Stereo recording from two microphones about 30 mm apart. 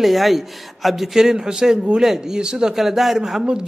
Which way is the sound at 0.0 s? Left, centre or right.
Centre.